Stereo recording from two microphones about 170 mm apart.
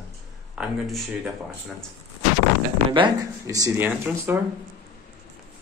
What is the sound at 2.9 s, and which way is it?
Speech, 25° right (ahead or behind).